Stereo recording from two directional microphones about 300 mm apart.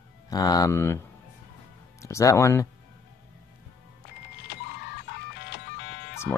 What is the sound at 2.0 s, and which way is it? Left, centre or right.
Speech, centre.